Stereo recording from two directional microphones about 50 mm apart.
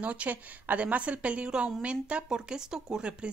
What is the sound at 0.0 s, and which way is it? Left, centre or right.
A woman's voice, right.